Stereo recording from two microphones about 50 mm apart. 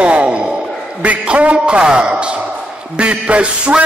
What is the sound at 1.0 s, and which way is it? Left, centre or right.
A man's voice, right.